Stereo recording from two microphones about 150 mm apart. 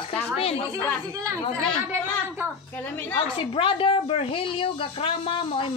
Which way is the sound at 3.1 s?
35° left (ahead or behind).